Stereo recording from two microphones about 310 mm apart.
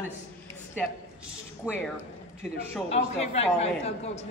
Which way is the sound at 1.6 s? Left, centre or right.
Centre.